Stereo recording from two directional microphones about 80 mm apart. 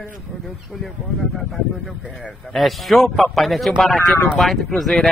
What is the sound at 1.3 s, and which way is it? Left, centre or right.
Speech, centre.